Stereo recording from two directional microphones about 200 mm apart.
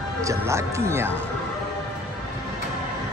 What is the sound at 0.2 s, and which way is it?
Speech, 15° right (ahead or behind).